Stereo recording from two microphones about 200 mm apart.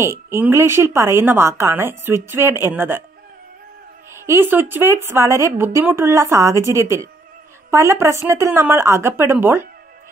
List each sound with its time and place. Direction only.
0.0 s a woman's voice: 15° right (ahead or behind)
4.1 s a woman's voice: 10° right (ahead or behind)